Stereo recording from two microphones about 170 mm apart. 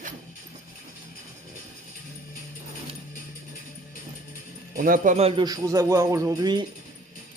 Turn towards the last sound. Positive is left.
turn(degrees=-25)  # may be behind; listen again after turning